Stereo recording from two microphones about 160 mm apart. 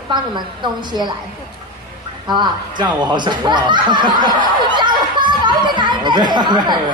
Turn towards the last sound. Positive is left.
turn(degrees=-30)  # may be behind; listen again after turning